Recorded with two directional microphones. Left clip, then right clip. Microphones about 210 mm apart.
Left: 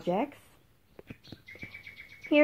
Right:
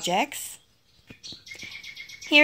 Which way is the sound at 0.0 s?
10° right (ahead or behind).